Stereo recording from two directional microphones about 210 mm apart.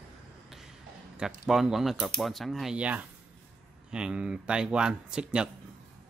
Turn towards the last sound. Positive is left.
turn(degrees=-5)  # may be behind; listen again after turning